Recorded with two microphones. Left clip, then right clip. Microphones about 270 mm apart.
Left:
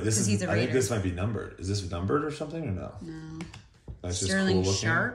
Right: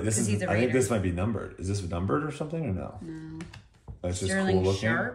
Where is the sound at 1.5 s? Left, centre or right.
Right.